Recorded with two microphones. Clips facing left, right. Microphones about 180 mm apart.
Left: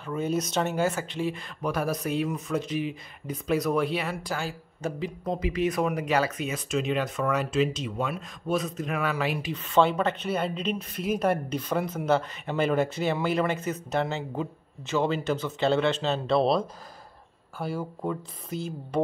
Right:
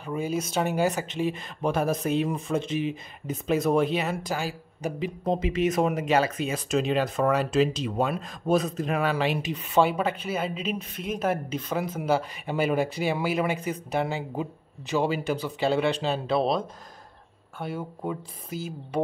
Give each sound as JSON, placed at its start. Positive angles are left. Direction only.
{"t": 0.0, "sound": "speech", "side_deg": -10}